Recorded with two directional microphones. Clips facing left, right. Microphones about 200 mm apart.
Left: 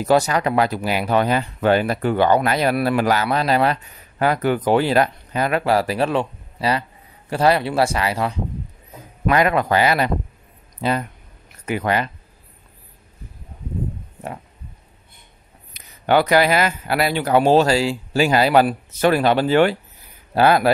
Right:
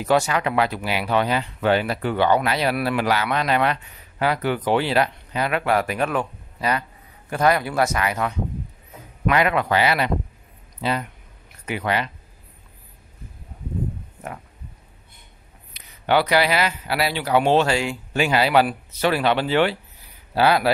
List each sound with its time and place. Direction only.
0.0 s speech: 40° left (ahead or behind)
15.7 s speech: 45° left (ahead or behind)